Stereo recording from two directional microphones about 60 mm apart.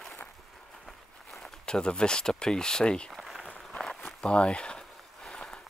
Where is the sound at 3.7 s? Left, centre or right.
Centre.